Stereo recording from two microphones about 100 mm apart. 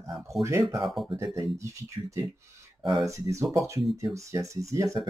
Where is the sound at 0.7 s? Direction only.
Centre (ahead or behind).